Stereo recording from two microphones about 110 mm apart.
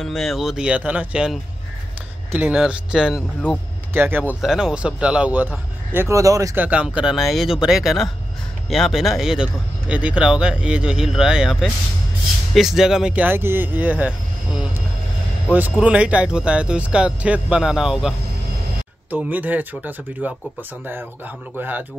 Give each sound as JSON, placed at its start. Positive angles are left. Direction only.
{"t": 0.0, "sound": "speech", "side_deg": 5}
{"t": 3.9, "sound": "speech", "side_deg": -20}
{"t": 4.4, "sound": "speech", "side_deg": -5}
{"t": 6.5, "sound": "speech", "side_deg": -15}
{"t": 15.8, "sound": "speech", "side_deg": -10}
{"t": 19.0, "sound": "speech", "side_deg": -15}
{"t": 21.5, "sound": "speech", "side_deg": -15}